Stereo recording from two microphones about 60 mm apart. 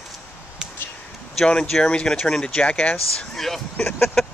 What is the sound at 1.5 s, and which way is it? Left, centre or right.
Speech, centre.